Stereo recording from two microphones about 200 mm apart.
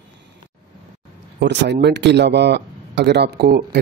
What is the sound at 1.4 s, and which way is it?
A man's voice, 60° right (ahead or behind).